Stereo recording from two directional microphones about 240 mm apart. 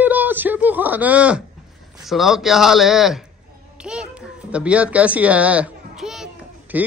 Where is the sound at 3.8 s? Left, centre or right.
Centre.